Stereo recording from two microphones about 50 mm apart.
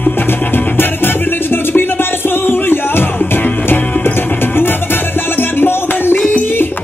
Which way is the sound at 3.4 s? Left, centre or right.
Left.